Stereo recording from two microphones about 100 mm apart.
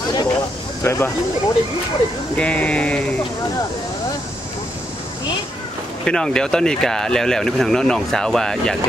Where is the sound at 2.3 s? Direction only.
10° left (ahead or behind).